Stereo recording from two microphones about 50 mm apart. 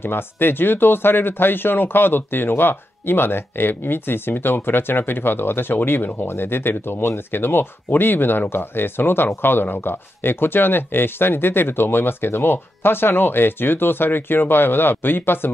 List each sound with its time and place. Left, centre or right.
0.0 s speech: left